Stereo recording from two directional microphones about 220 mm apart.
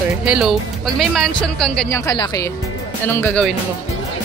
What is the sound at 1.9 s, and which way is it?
A woman's voice, 15° left (ahead or behind).